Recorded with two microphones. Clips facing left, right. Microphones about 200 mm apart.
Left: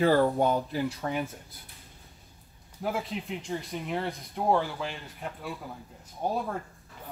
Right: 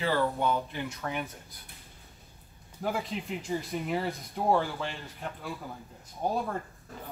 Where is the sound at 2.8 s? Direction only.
Centre (ahead or behind).